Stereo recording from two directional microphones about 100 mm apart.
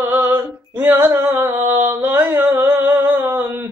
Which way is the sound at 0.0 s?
20° right (ahead or behind).